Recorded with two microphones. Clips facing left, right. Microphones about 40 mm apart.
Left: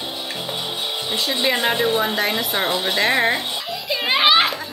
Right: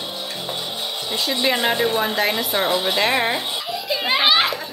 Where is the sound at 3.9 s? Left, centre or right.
Centre.